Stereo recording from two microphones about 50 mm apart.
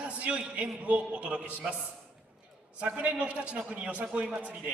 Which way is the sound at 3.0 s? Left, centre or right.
Right.